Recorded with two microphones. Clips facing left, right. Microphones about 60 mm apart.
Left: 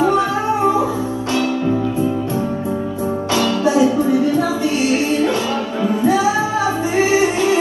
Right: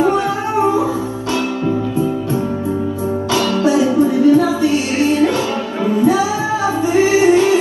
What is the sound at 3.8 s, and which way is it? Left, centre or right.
Music, right.